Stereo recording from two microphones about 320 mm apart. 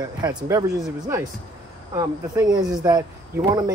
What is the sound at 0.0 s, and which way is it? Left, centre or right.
Speech, centre.